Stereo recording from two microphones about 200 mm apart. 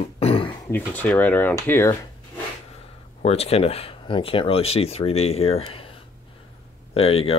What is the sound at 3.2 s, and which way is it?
Speech, 30° left (ahead or behind).